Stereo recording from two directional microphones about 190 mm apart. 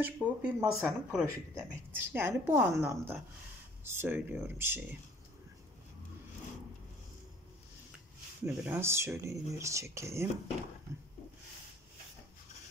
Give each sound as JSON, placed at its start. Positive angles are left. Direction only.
{"t": 0.0, "sound": "a woman's voice", "side_deg": -10}
{"t": 8.5, "sound": "a woman's voice", "side_deg": -10}